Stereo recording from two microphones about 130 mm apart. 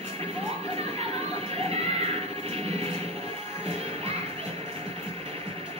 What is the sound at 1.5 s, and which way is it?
Music, 50° right (ahead or behind).